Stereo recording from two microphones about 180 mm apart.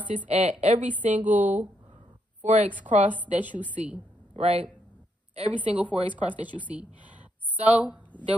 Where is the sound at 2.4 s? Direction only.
40° right (ahead or behind).